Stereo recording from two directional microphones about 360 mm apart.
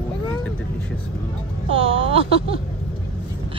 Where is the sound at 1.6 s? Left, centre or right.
Centre.